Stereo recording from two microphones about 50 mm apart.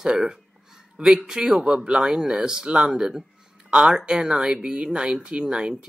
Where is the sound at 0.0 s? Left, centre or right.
Centre.